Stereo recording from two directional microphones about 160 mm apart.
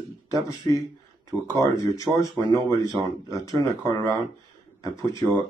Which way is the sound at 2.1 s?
20° right (ahead or behind).